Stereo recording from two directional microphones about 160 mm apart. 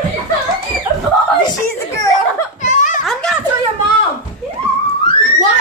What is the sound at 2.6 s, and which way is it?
Giggle, 50° left (ahead or behind).